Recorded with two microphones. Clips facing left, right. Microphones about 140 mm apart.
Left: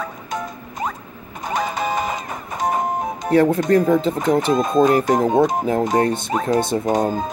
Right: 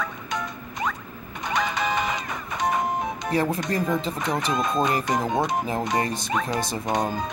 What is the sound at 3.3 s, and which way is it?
Speech, 60° left (ahead or behind).